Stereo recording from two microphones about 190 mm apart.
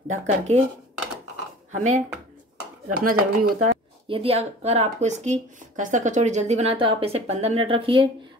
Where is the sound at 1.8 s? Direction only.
40° right (ahead or behind).